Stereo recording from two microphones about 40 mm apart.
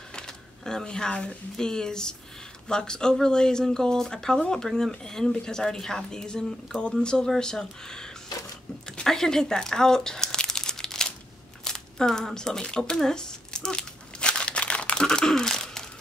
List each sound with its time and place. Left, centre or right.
0.7 s speech: centre
9.0 s crumpling: centre
11.6 s speech: centre
12.9 s crumpling: centre; by 15.0 s left
15.0 s a sound: centre